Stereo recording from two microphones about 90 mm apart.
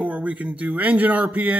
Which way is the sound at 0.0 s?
15° right (ahead or behind).